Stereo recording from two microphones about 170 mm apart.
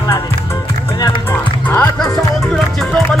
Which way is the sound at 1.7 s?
10° left (ahead or behind).